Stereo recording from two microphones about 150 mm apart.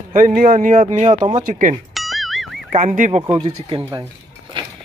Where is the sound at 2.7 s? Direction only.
50° right (ahead or behind); by 4.0 s 30° right (ahead or behind).